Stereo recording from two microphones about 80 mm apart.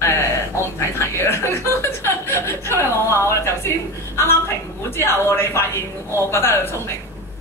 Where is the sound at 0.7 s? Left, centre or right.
Left.